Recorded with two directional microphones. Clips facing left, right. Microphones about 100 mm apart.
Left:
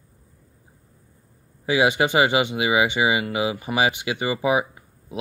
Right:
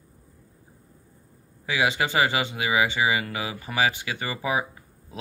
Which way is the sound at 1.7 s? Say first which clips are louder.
Left 5 dB; 25° left (ahead or behind).